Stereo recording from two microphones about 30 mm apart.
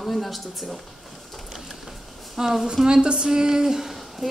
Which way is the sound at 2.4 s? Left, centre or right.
Centre.